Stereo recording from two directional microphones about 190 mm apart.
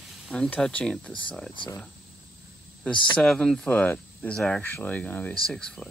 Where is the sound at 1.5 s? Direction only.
25° left (ahead or behind).